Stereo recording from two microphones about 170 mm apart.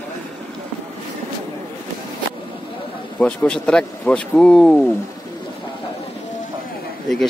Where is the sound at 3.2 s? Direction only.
5° left (ahead or behind).